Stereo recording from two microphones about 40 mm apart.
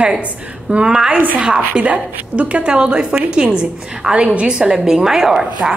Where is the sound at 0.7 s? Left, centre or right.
Centre.